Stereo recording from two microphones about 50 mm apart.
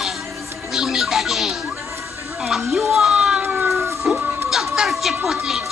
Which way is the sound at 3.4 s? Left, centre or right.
Right.